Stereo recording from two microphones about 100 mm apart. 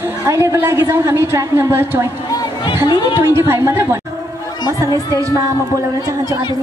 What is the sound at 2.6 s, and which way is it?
Speech, 50° left (ahead or behind).